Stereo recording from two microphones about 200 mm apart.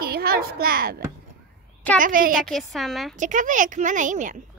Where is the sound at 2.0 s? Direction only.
45° right (ahead or behind).